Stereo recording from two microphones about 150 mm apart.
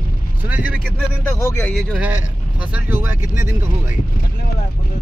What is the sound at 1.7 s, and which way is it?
Speech, 10° right (ahead or behind).